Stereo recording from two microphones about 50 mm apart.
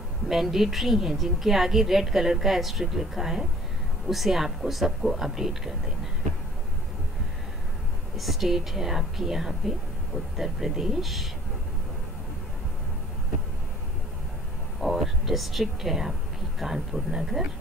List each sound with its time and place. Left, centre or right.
0.3 s a woman's voice: centre
8.2 s speech: centre
14.8 s a woman's voice: centre